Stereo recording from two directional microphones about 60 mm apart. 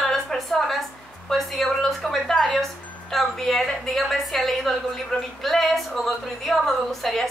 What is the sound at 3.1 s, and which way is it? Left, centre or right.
A woman's voice, centre.